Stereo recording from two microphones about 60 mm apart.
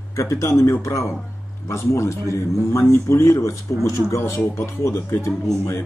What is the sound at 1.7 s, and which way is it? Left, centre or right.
Speech, left.